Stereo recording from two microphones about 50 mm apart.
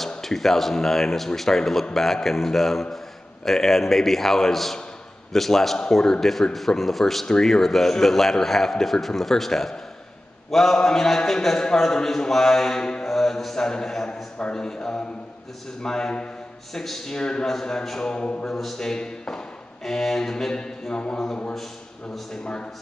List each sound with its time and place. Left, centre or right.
0.2 s a man's voice: centre
18.5 s speech: centre
22.3 s a man's voice: centre